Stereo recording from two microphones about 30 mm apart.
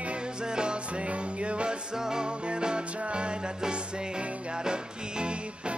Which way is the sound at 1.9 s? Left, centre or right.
Right.